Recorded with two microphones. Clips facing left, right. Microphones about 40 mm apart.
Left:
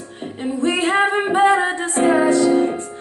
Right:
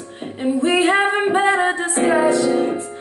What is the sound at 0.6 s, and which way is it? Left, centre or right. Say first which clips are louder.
Music: right 1 dB; centre.